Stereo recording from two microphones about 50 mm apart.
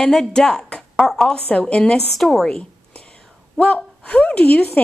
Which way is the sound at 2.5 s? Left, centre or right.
Left.